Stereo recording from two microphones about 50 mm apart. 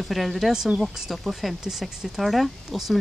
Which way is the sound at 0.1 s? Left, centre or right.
Centre.